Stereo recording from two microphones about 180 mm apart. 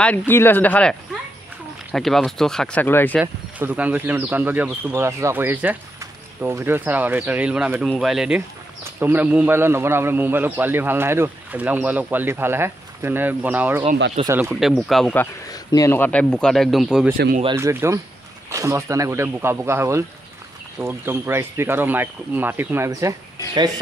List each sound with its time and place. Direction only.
0.0 s speech: 10° left (ahead or behind)
3.2 s a man's voice: 10° right (ahead or behind)
14.5 s speech: centre (ahead or behind)
15.5 s speech: 20° left (ahead or behind); by 17.1 s centre (ahead or behind)
17.6 s a man's voice: 15° right (ahead or behind)